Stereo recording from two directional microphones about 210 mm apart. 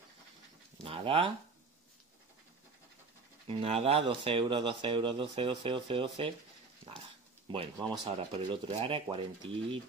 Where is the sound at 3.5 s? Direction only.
30° right (ahead or behind).